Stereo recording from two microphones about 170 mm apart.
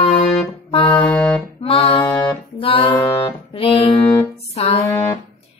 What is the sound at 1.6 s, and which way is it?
Music, 35° left (ahead or behind).